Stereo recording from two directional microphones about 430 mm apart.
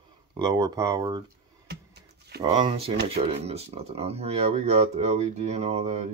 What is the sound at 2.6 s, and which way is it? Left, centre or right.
Speech, centre.